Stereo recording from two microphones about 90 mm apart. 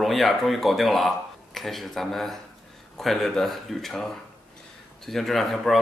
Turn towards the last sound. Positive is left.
turn(degrees=0)  # may be behind; listen again after turning